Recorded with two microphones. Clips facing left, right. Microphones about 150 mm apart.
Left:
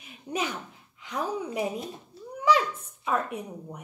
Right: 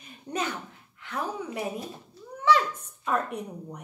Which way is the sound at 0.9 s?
15° left (ahead or behind).